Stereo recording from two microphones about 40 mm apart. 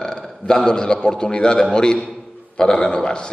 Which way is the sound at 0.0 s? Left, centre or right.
Centre.